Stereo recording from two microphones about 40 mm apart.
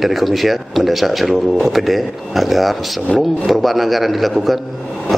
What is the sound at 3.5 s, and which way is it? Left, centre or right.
Speech, centre.